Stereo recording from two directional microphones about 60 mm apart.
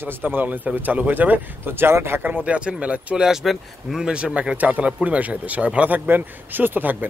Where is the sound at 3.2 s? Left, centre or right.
Centre.